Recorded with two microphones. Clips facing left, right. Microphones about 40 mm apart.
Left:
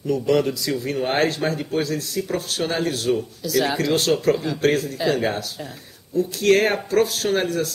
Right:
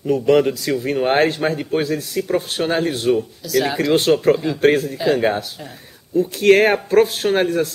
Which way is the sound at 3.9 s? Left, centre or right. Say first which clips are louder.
Right 6 dB; right.